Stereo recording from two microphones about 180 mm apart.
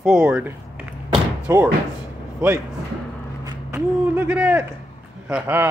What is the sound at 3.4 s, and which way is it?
Speech, 15° right (ahead or behind).